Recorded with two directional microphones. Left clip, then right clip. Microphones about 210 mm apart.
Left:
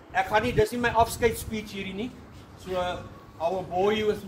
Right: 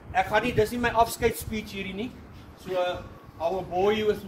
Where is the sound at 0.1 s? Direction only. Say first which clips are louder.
Even; 45° right (ahead or behind).